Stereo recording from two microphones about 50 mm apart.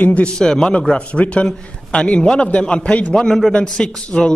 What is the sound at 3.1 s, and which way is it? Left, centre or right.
Speech, centre.